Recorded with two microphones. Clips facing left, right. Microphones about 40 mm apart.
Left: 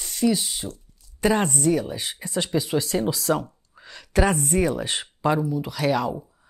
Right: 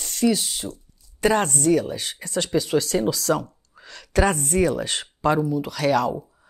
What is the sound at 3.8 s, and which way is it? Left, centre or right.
A woman's voice, centre.